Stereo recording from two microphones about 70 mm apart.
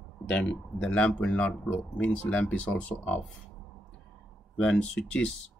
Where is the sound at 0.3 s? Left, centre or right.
Centre.